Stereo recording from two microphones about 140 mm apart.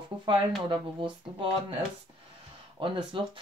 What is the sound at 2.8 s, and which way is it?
Speech, 35° right (ahead or behind).